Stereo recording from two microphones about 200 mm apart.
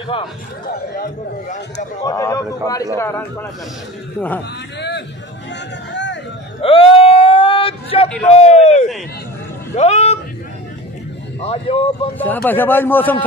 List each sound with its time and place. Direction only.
0.1 s speech: 25° left (ahead or behind)
1.0 s a man's voice: 40° left (ahead or behind)
2.0 s a man's voice: 15° left (ahead or behind)
4.7 s a sound: 60° left (ahead or behind)
6.6 s a sound: 25° left (ahead or behind)
8.4 s a man's voice: 35° left (ahead or behind)
11.4 s speech: 30° left (ahead or behind)
12.2 s a man's voice: 10° left (ahead or behind)